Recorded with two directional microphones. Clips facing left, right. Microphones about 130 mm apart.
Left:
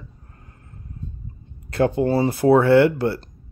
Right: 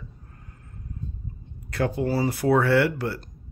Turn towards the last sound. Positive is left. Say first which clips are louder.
# left 7 dB
turn(degrees=30)  # may be behind; listen again after turning